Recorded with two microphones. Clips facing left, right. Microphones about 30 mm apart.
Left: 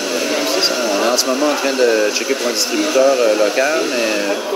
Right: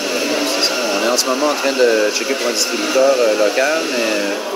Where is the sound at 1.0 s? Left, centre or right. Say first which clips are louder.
Even; centre.